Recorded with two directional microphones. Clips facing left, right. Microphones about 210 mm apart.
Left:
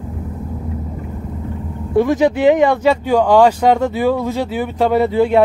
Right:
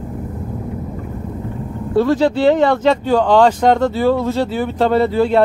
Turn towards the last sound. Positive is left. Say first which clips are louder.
# left 1 dB
turn(degrees=15)  # may be behind; listen again after turning